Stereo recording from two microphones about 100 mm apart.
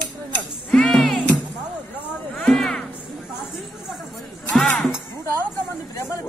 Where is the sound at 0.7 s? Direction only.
5° left (ahead or behind).